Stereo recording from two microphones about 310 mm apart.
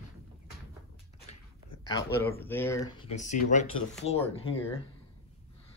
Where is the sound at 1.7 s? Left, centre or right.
Left.